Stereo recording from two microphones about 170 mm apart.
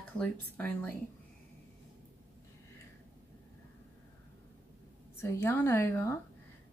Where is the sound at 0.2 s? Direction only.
10° left (ahead or behind).